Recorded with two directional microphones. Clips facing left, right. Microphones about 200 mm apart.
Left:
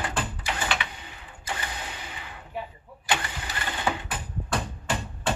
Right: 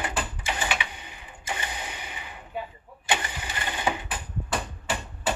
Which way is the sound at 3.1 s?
20° right (ahead or behind).